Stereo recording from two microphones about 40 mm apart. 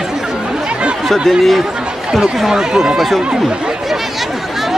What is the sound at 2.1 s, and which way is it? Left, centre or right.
Speech, centre.